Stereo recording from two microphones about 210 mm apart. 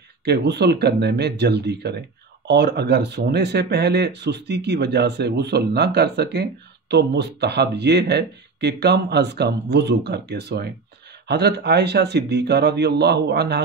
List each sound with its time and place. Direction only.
0.2 s speech: 55° right (ahead or behind)